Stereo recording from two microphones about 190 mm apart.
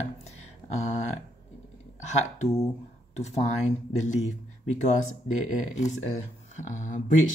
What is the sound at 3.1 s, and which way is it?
Speech, 35° left (ahead or behind).